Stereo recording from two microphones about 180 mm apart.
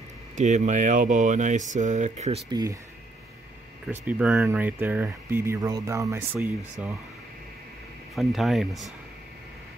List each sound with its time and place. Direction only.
0.4 s speech: 40° right (ahead or behind)
2.5 s speech: 20° right (ahead or behind)
3.8 s speech: 10° right (ahead or behind)
8.1 s speech: centre (ahead or behind)